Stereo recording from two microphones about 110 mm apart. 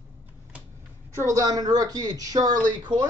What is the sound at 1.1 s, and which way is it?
Speech, 30° right (ahead or behind).